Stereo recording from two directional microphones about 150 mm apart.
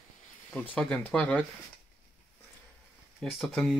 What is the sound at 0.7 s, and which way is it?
Speech, 5° left (ahead or behind).